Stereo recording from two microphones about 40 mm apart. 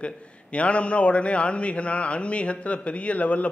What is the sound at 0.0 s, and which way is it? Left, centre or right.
A man's voice, left.